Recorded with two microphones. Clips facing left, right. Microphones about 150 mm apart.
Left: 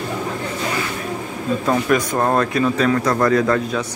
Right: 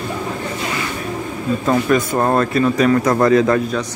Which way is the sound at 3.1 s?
20° right (ahead or behind).